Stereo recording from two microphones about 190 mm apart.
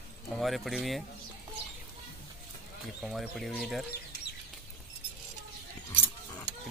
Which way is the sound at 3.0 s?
Centre (ahead or behind).